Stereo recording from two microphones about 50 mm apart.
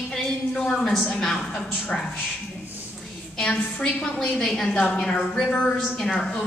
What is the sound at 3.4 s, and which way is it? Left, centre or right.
A woman's voice, centre.